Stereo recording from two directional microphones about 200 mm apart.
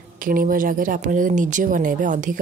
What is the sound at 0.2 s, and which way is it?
Speech, 45° right (ahead or behind).